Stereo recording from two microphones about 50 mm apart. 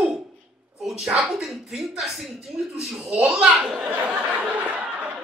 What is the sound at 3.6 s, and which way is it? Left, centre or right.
Speech, right.